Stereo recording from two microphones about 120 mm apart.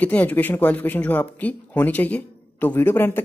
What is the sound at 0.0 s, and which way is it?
Speech, 10° left (ahead or behind).